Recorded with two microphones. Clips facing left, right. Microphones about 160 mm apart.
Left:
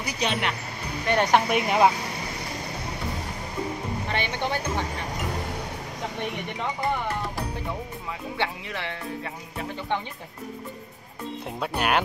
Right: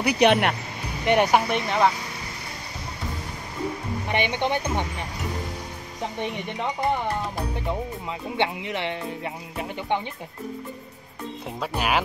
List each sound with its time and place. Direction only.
0.0 s speech: 65° right (ahead or behind)
1.0 s speech: 15° right (ahead or behind)
1.5 s speech: 15° left (ahead or behind)
4.1 s speech: 20° right (ahead or behind)
8.4 s speech: 20° right (ahead or behind)
11.6 s speech: centre (ahead or behind)